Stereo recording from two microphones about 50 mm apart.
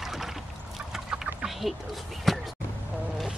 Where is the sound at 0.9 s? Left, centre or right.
Centre.